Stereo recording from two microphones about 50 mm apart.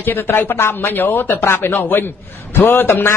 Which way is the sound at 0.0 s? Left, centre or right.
Left.